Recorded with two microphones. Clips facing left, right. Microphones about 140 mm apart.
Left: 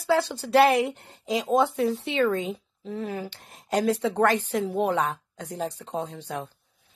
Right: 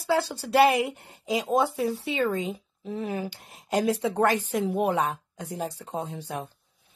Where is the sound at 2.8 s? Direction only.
15° right (ahead or behind).